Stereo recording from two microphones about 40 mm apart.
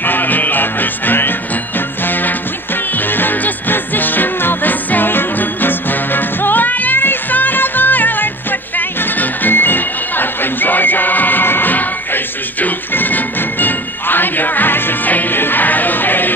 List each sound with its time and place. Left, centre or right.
0.0 s music: left